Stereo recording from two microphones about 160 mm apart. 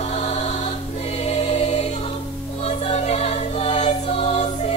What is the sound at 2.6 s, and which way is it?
Choir, 40° left (ahead or behind).